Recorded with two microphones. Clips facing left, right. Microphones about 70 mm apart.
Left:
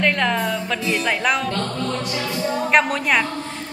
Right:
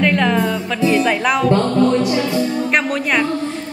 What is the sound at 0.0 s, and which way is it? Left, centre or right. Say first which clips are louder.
Music: right 4 dB; centre.